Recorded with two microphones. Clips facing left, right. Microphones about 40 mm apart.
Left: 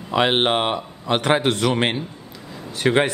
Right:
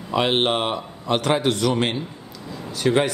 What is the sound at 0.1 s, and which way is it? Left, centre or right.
A man's voice, left.